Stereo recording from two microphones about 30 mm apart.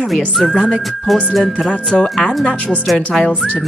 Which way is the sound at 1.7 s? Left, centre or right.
Left.